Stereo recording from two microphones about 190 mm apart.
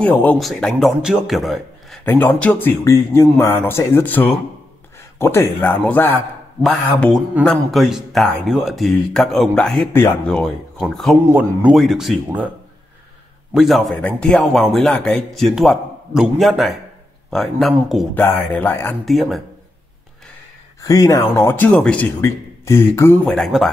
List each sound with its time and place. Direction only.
0.0 s speech: 10° left (ahead or behind)
2.0 s a man's voice: 10° left (ahead or behind)
11.2 s speech: 10° right (ahead or behind)
13.5 s a man's voice: centre (ahead or behind)
19.0 s speech: centre (ahead or behind)
20.8 s a man's voice: 20° left (ahead or behind); by 23.7 s centre (ahead or behind)